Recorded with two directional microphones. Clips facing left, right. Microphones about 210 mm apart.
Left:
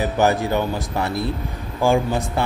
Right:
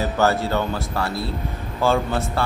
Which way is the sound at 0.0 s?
15° left (ahead or behind).